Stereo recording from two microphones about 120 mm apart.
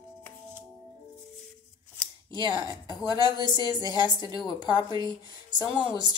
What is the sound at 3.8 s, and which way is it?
Speech, 35° left (ahead or behind).